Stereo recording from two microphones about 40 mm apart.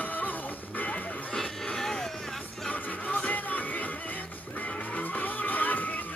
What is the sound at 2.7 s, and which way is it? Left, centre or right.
Music, left.